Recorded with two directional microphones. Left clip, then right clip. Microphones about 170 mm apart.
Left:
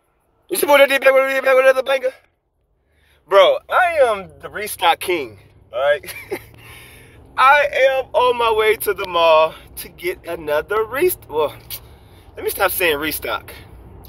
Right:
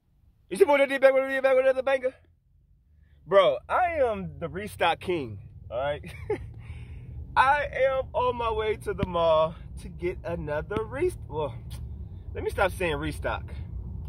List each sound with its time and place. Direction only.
0.5 s a man's voice: 15° right (ahead or behind)
3.3 s speech: 25° right (ahead or behind)
3.5 s speech: 45° right (ahead or behind)
4.7 s speech: 25° right (ahead or behind)
5.8 s speech: 35° right (ahead or behind)
6.1 s a man's voice: 15° right (ahead or behind)